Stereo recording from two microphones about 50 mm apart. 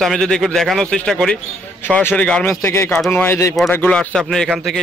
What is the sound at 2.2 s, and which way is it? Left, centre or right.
Speech, left.